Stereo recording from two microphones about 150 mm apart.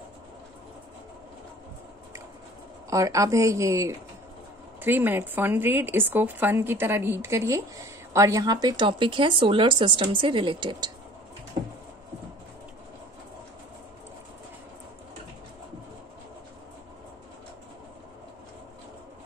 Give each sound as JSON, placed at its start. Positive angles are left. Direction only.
{"t": 2.9, "sound": "speech", "side_deg": -20}